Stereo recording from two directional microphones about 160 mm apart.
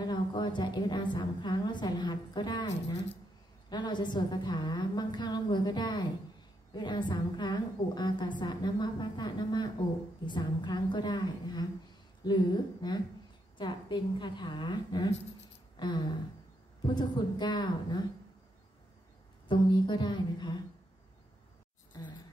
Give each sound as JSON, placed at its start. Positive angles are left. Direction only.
{"t": 0.0, "sound": "a woman's voice", "side_deg": 30}
{"t": 19.4, "sound": "a woman's voice", "side_deg": 30}
{"t": 21.9, "sound": "a sound", "side_deg": 25}